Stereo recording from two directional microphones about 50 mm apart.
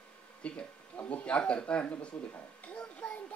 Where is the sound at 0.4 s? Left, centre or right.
Left.